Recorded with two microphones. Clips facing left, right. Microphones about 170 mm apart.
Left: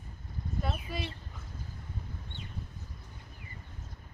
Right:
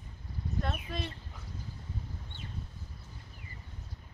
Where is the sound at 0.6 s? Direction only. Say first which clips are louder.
Even; 5° left (ahead or behind).